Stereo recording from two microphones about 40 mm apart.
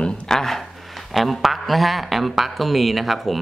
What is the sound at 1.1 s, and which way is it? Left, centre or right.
Speech, centre.